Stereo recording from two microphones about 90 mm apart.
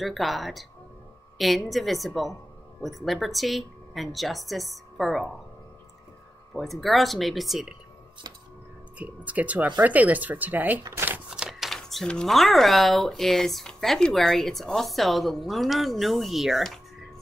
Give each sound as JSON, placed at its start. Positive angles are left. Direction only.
{"t": 0.0, "sound": "speech", "side_deg": 0}
{"t": 1.7, "sound": "speech", "side_deg": 0}
{"t": 6.5, "sound": "speech", "side_deg": 0}
{"t": 8.9, "sound": "speech", "side_deg": -15}
{"t": 11.2, "sound": "speech", "side_deg": -10}